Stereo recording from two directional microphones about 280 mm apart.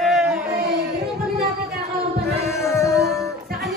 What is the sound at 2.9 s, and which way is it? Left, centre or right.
Music, centre.